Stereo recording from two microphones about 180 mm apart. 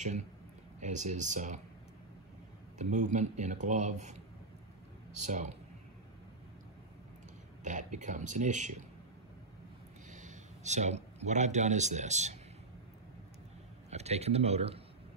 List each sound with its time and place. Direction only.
0.7 s speech: 40° right (ahead or behind)
2.8 s speech: 40° right (ahead or behind)
5.2 s speech: 40° right (ahead or behind)
7.6 s speech: 45° right (ahead or behind)
10.1 s speech: 40° right (ahead or behind)
13.8 s speech: 35° right (ahead or behind)